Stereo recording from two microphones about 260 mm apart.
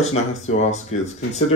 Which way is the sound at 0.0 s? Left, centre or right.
Left.